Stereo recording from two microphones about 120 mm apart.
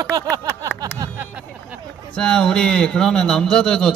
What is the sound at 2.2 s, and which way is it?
A man's voice, 5° left (ahead or behind).